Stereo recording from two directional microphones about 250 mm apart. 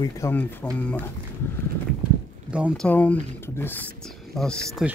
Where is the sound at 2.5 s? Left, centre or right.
Centre.